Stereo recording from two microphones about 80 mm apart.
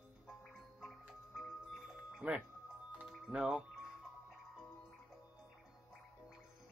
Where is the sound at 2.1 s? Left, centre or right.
Centre.